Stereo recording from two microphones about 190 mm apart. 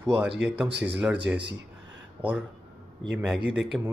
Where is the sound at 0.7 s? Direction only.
65° right (ahead or behind).